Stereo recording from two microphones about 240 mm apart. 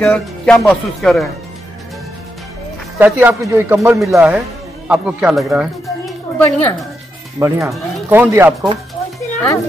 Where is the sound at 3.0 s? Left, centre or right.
Centre.